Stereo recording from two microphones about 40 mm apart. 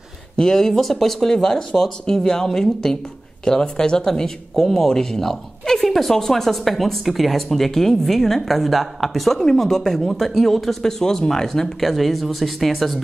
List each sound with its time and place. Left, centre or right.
0.4 s a woman's voice: centre
9.4 s a woman's voice: centre